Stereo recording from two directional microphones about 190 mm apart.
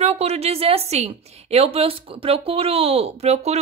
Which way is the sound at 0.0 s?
35° right (ahead or behind).